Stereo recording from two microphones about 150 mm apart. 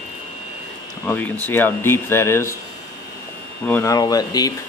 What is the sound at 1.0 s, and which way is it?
Speech, 10° left (ahead or behind).